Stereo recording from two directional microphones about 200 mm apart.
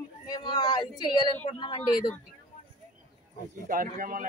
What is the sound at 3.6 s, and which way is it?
Speech, 45° right (ahead or behind).